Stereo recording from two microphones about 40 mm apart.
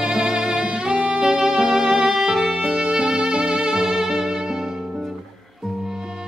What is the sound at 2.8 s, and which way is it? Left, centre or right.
Music, centre.